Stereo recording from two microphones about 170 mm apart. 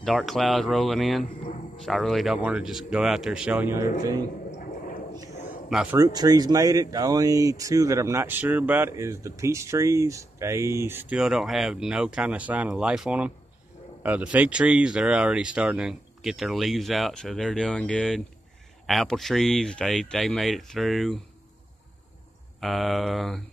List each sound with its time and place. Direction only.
0.0 s speech: centre (ahead or behind)
1.2 s speech: 55° left (ahead or behind)
1.8 s speech: centre (ahead or behind)
4.5 s a sound: 55° left (ahead or behind)
5.7 s speech: 5° right (ahead or behind)
5.9 s speech: 20° right (ahead or behind); by 21.2 s centre (ahead or behind)
22.6 s speech: centre (ahead or behind)